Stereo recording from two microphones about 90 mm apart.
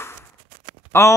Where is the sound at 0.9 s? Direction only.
30° left (ahead or behind).